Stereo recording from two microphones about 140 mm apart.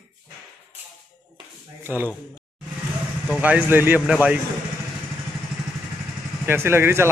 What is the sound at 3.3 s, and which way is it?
Speech, 10° right (ahead or behind).